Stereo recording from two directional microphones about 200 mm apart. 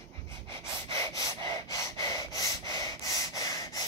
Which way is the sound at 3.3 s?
15° left (ahead or behind).